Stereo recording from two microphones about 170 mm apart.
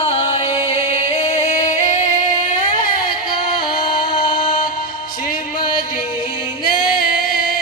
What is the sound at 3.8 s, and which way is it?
Music, 30° left (ahead or behind).